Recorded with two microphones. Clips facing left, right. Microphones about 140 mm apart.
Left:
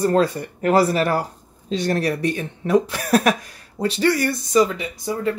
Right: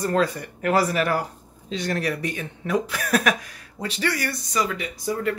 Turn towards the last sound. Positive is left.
turn(degrees=25)  # may be behind; listen again after turning